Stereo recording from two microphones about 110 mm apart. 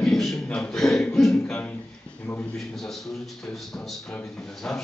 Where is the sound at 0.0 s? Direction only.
5° left (ahead or behind).